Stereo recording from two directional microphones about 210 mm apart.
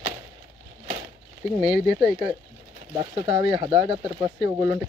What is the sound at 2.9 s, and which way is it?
Speech, 25° right (ahead or behind).